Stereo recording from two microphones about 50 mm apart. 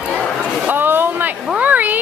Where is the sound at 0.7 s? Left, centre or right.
Right.